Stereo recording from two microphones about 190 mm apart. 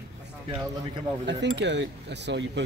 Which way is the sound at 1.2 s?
65° right (ahead or behind).